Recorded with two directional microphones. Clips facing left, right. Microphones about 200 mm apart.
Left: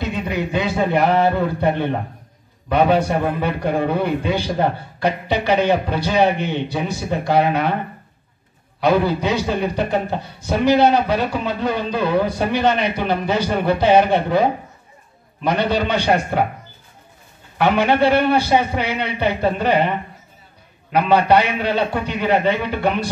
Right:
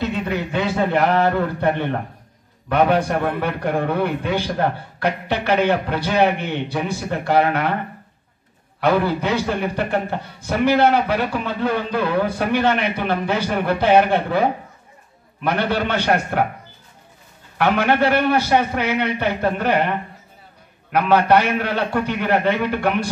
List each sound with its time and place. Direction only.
0.0 s a man's voice: 15° left (ahead or behind)
8.8 s a man's voice: 15° left (ahead or behind)
17.6 s a man's voice: 15° left (ahead or behind)
20.9 s a man's voice: 15° left (ahead or behind)